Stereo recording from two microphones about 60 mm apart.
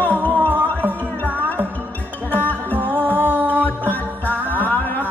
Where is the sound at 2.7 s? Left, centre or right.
Right.